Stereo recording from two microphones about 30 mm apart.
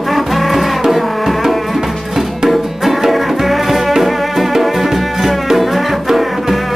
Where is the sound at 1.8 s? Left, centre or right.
Centre.